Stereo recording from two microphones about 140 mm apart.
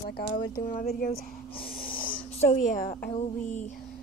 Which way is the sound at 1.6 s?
90° left.